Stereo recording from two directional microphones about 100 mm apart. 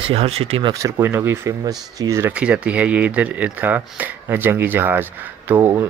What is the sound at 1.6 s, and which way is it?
Speech, 40° right (ahead or behind).